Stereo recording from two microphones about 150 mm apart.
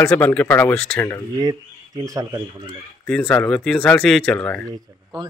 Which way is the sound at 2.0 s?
25° right (ahead or behind).